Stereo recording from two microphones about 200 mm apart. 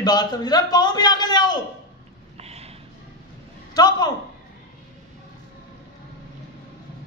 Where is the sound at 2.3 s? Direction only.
30° right (ahead or behind).